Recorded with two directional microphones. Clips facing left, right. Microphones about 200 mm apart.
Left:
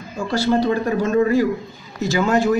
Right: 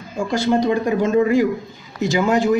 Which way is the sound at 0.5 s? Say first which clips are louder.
Right 1 dB; 15° right (ahead or behind).